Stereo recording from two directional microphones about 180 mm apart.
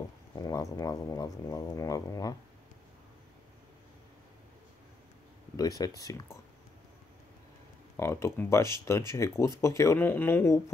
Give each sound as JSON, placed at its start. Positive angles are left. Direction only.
{"t": 0.4, "sound": "speech", "side_deg": 20}
{"t": 5.6, "sound": "speech", "side_deg": 20}
{"t": 8.0, "sound": "speech", "side_deg": 15}